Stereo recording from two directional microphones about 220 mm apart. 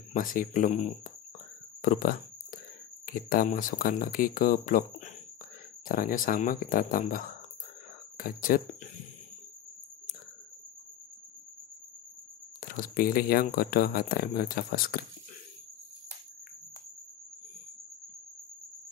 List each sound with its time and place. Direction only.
0.1 s speech: 40° left (ahead or behind)
1.8 s a sound: 40° left (ahead or behind)
3.1 s speech: 40° left (ahead or behind)
12.5 s speech: 40° left (ahead or behind)